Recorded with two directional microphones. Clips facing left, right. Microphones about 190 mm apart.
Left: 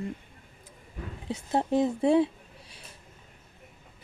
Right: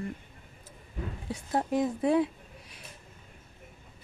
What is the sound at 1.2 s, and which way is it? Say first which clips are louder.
Speech: left 3 dB; 25° left (ahead or behind).